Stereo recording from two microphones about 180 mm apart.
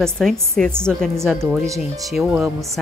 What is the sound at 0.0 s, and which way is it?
Speech, centre (ahead or behind).